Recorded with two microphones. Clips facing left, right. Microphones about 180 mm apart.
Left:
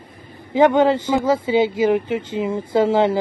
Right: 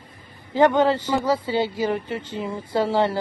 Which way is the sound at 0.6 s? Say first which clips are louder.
Left 3 dB; 10° left (ahead or behind).